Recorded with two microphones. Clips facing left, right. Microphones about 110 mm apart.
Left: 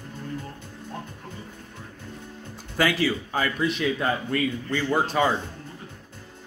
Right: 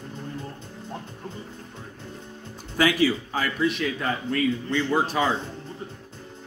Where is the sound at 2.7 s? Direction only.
15° right (ahead or behind).